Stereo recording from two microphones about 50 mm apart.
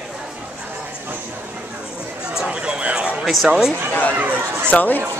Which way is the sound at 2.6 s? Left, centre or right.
Right.